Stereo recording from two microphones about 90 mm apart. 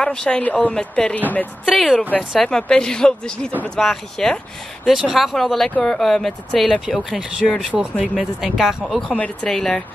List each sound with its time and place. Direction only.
0.0 s speech: 10° left (ahead or behind)
1.7 s speech: centre (ahead or behind)
7.2 s speech: 10° right (ahead or behind)
7.9 s speech: 10° left (ahead or behind)
8.4 s speech: centre (ahead or behind)
9.1 s speech: 15° left (ahead or behind)
9.5 s speech: 5° left (ahead or behind)